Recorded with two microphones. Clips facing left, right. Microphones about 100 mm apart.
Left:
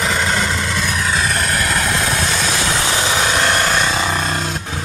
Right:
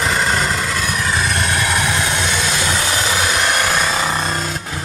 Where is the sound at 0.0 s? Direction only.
Centre (ahead or behind).